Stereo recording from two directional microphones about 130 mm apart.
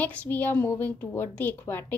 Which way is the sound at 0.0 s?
15° left (ahead or behind).